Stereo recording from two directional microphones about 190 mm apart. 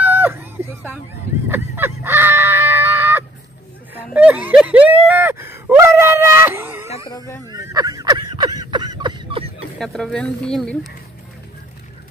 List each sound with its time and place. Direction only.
0.0 s a sound: 10° right (ahead or behind)
1.5 s livestock: 10° right (ahead or behind)
3.9 s whimper: 5° right (ahead or behind)
7.1 s speech: 20° left (ahead or behind)
7.4 s a sound: 20° right (ahead or behind)
9.8 s speech: 5° left (ahead or behind)